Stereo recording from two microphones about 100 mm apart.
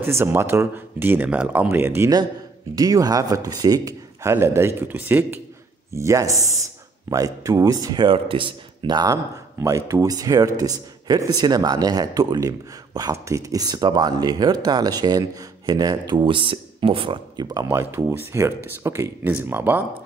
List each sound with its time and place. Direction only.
0.0 s speech: 25° right (ahead or behind)
2.7 s a man's voice: 40° right (ahead or behind); by 5.4 s 20° right (ahead or behind)
5.9 s a man's voice: 30° right (ahead or behind)
8.1 s a man's voice: 60° right (ahead or behind)
17.6 s speech: 25° right (ahead or behind)